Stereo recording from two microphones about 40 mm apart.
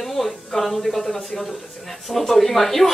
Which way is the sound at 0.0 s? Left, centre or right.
Centre.